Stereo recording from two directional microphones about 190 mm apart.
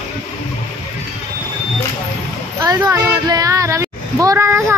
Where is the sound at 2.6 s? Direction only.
20° right (ahead or behind).